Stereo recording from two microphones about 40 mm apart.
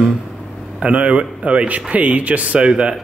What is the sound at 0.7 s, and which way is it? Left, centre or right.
A man's voice, right.